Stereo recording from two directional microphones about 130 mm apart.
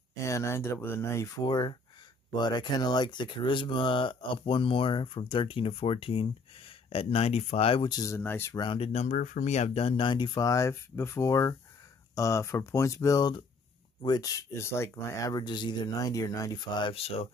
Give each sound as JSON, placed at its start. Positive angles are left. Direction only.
{"t": 0.1, "sound": "speech", "side_deg": 25}
{"t": 7.9, "sound": "speech", "side_deg": 25}
{"t": 8.5, "sound": "speech", "side_deg": 40}